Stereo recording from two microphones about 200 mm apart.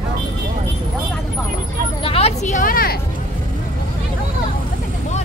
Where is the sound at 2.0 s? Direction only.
30° left (ahead or behind); by 3.0 s 50° left (ahead or behind).